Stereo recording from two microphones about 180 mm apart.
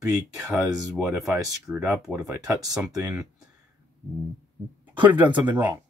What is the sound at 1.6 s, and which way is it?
Speech, 5° right (ahead or behind).